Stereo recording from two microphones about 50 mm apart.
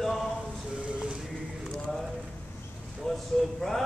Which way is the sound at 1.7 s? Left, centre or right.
Centre.